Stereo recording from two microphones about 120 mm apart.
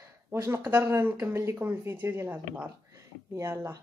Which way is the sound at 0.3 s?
20° right (ahead or behind).